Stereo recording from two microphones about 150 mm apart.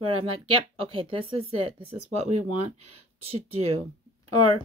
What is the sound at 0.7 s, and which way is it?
Speech, 35° right (ahead or behind).